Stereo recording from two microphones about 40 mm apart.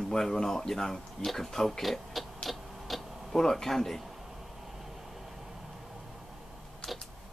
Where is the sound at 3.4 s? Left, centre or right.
Centre.